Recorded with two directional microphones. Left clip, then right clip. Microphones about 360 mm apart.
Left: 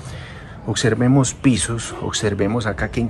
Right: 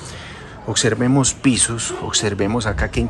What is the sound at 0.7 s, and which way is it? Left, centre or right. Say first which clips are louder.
Speech: even; centre.